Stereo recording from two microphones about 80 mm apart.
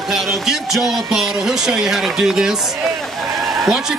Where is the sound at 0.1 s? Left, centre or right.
Centre.